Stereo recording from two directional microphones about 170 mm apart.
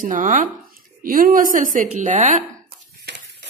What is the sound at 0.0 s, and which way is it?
A woman's voice, 50° right (ahead or behind).